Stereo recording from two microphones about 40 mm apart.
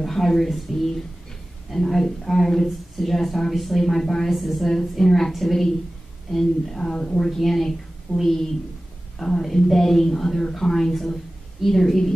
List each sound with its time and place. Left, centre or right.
0.0 s a woman's voice: centre
6.8 s a woman's voice: centre